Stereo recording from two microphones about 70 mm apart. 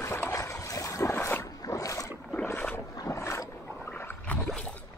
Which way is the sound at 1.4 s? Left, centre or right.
Left.